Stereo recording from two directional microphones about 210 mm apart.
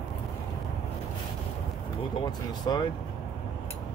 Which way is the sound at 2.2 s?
20° left (ahead or behind).